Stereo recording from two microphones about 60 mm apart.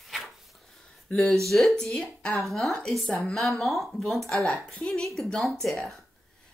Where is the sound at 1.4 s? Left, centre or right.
Centre.